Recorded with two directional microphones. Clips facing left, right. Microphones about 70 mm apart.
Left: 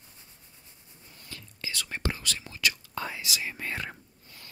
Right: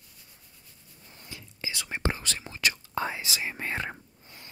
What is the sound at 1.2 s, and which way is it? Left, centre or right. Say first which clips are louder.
Whispering: right 1 dB; centre.